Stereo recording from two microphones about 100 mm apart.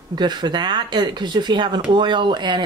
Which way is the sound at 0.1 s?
50° right (ahead or behind).